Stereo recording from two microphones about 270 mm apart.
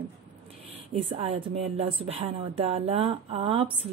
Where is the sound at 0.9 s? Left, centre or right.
Right.